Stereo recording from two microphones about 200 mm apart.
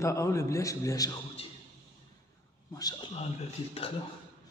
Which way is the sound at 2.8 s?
20° left (ahead or behind).